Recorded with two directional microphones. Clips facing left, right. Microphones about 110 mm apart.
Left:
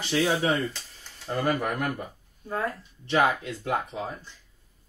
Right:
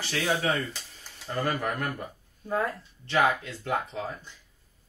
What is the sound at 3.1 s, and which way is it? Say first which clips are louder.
Speech: left 1 dB; 20° left (ahead or behind).